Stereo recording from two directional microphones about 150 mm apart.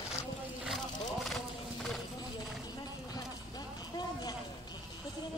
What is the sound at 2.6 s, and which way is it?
Clip-clop, 25° left (ahead or behind).